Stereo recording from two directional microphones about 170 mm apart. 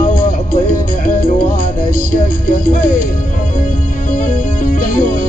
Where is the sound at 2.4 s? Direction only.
55° left (ahead or behind).